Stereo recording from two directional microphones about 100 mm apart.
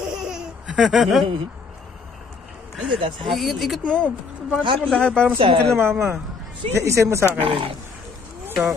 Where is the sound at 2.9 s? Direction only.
60° right (ahead or behind).